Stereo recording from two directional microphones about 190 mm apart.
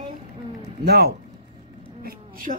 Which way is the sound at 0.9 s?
55° right (ahead or behind).